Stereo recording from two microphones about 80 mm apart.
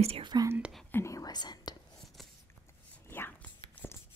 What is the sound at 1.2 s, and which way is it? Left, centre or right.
Whispering, left.